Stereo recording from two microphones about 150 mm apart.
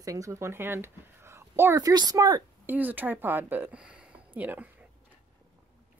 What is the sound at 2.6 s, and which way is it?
Speech, 10° right (ahead or behind).